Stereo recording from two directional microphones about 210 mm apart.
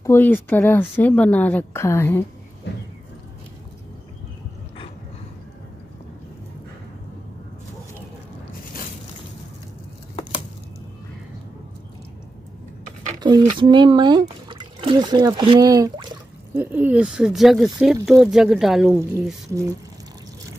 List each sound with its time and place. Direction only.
0.0 s speech: 10° left (ahead or behind)
13.2 s speech: 20° right (ahead or behind); by 18.9 s centre (ahead or behind)